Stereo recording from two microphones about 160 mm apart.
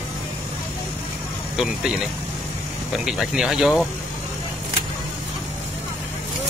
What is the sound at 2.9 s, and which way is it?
Speech, 5° right (ahead or behind).